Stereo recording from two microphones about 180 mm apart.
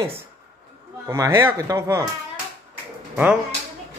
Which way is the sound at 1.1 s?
15° right (ahead or behind).